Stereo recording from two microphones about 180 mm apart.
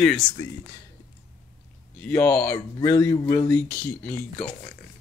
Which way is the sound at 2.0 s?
15° left (ahead or behind).